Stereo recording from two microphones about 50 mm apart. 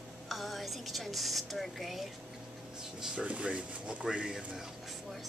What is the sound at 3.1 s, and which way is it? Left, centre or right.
Speech, right.